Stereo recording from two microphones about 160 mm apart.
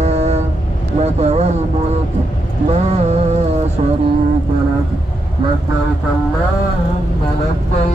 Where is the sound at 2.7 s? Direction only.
45° right (ahead or behind).